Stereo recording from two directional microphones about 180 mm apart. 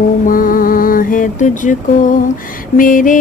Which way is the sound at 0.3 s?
50° left (ahead or behind).